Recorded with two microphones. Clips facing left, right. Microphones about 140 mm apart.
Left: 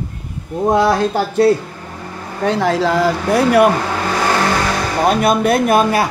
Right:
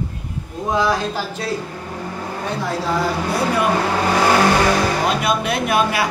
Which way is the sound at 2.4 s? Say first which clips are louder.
Left 9 dB; 80° left.